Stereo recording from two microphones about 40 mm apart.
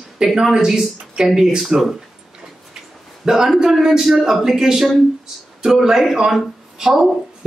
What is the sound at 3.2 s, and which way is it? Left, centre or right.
Speech, centre.